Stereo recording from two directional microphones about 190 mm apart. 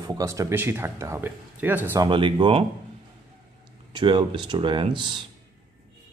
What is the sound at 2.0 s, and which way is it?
Speech, 25° right (ahead or behind).